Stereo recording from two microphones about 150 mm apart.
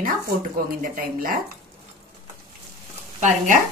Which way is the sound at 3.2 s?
60° right (ahead or behind).